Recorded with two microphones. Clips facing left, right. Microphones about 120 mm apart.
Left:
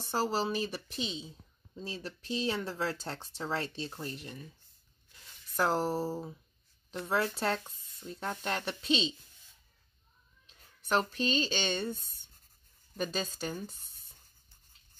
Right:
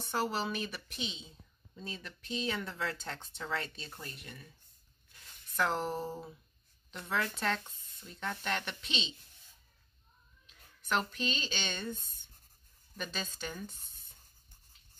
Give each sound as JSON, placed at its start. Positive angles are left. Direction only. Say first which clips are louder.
{"t": 0.0, "sound": "speech", "louder": "left 3 dB", "side_deg": 35}
{"t": 5.6, "sound": "speech", "louder": "left 3 dB", "side_deg": 35}
{"t": 10.4, "sound": "speech", "louder": "left 1 dB", "side_deg": 35}